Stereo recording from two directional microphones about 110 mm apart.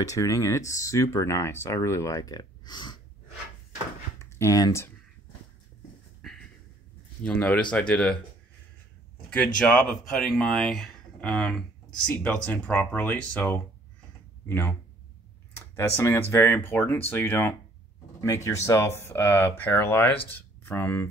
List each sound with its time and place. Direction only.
0.0 s speech: 30° left (ahead or behind)
4.2 s speech: 25° left (ahead or behind)
6.2 s a sound: 5° left (ahead or behind)
7.2 s speech: 10° left (ahead or behind)
9.3 s speech: 10° left (ahead or behind)